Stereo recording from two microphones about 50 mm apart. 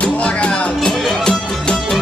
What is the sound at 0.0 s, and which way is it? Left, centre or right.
Music, centre.